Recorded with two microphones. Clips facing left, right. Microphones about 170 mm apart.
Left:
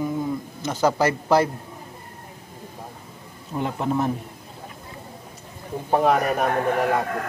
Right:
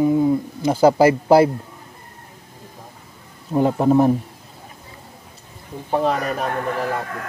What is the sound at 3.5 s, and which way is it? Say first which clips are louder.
Speech: right 9 dB; 35° right (ahead or behind).